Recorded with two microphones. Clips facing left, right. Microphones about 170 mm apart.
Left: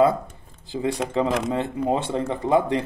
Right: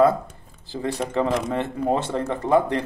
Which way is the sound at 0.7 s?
15° left (ahead or behind).